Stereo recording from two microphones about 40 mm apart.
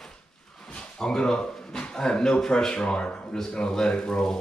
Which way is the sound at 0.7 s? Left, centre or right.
Centre.